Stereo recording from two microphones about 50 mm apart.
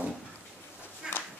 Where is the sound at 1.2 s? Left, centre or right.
Left.